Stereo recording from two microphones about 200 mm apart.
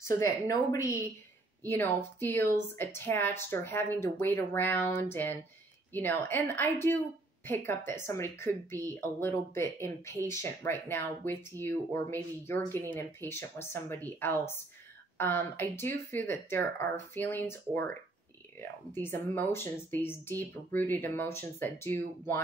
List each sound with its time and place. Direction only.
0.0 s speech: 15° left (ahead or behind)